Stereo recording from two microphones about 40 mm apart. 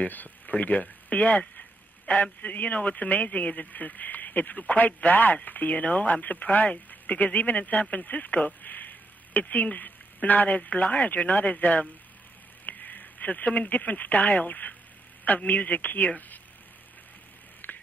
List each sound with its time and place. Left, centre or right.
0.0 s speech: left
1.6 s a sound: left
2.4 s speech: left
6.9 s radio: left
7.3 s a man's voice: left
17.6 s a sound: left